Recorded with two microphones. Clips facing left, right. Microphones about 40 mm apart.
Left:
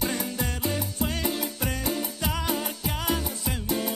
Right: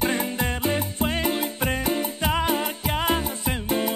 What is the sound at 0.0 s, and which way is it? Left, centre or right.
Music, right.